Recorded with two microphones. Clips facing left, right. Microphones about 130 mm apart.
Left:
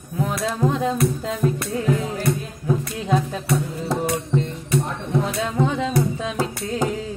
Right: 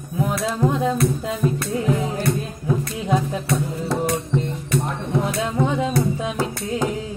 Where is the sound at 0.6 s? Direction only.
5° right (ahead or behind).